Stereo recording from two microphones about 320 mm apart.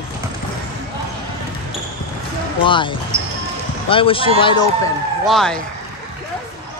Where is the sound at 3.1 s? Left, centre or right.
Right.